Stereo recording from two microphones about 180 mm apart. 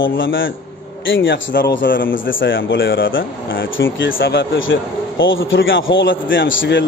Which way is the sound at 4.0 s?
75° left (ahead or behind).